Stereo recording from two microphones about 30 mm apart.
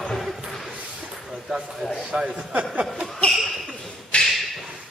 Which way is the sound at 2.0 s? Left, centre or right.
Right.